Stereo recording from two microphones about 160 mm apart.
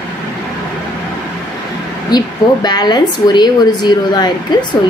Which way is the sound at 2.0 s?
25° left (ahead or behind).